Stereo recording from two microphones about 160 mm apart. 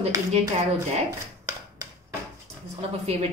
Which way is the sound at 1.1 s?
20° right (ahead or behind).